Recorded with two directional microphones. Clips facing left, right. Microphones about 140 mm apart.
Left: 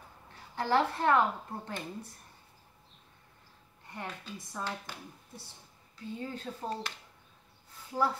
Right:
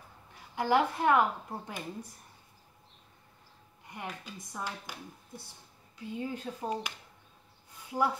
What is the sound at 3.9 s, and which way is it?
A woman's voice, 15° right (ahead or behind).